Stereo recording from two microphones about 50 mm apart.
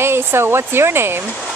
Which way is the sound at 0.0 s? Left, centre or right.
Right.